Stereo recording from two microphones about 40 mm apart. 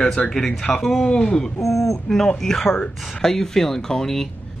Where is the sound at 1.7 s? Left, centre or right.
Centre.